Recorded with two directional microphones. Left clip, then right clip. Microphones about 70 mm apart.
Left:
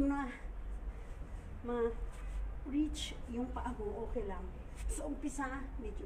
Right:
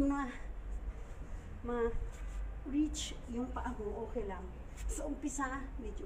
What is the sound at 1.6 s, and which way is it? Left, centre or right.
Speech, centre.